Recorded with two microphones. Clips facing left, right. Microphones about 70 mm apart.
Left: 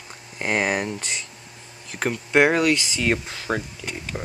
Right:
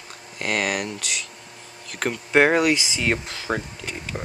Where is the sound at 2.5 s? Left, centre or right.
Centre.